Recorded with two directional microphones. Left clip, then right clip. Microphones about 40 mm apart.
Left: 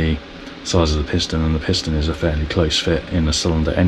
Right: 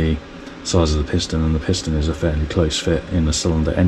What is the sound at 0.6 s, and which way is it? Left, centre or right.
Speech, right.